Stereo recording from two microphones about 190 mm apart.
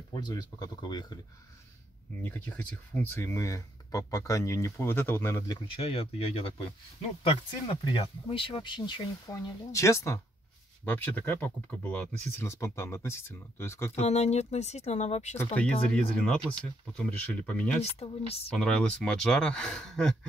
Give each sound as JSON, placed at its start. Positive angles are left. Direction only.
{"t": 0.1, "sound": "speech", "side_deg": 20}
{"t": 2.2, "sound": "speech", "side_deg": 10}
{"t": 5.7, "sound": "speech", "side_deg": 30}
{"t": 13.9, "sound": "speech", "side_deg": 35}
{"t": 15.3, "sound": "speech", "side_deg": 5}
{"t": 17.9, "sound": "speech", "side_deg": 30}
{"t": 18.6, "sound": "speech", "side_deg": 5}